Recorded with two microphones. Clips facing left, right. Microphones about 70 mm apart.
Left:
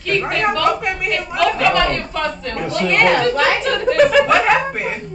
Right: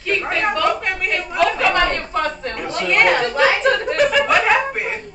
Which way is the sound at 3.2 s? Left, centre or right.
Right.